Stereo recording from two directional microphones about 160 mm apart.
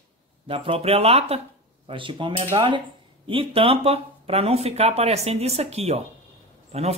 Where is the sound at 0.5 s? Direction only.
35° right (ahead or behind).